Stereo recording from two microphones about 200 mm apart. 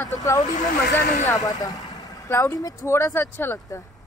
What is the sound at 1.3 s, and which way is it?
Speech, 20° left (ahead or behind).